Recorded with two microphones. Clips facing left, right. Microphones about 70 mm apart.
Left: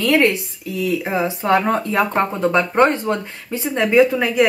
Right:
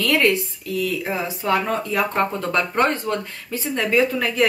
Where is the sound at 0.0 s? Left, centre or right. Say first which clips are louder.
Left 3 dB; left.